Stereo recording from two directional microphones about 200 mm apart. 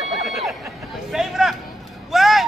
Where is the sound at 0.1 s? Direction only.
Centre (ahead or behind).